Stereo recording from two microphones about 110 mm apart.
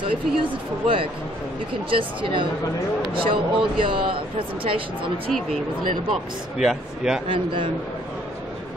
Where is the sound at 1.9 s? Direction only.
50° right (ahead or behind).